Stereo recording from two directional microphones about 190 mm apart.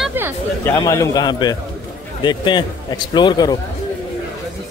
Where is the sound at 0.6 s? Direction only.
15° left (ahead or behind).